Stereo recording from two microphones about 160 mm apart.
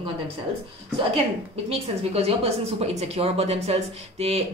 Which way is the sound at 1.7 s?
40° right (ahead or behind).